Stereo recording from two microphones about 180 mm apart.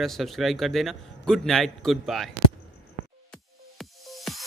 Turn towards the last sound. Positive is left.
turn(degrees=0)  # may be behind; listen again after turning